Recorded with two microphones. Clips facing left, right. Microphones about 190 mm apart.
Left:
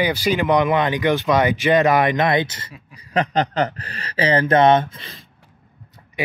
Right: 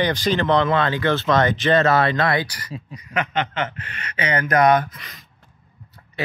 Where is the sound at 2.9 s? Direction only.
35° left (ahead or behind).